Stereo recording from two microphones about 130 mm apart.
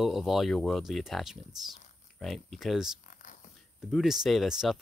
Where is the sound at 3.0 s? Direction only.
80° left.